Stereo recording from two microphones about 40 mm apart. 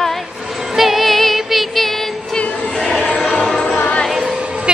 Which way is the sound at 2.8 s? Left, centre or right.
Centre.